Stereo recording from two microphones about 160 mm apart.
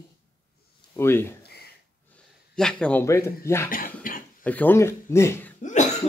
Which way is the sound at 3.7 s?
60° left (ahead or behind).